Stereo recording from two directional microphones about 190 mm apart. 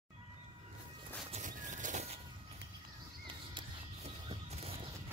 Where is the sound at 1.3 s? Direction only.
40° right (ahead or behind).